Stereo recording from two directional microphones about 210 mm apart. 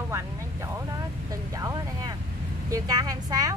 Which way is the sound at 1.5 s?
15° right (ahead or behind).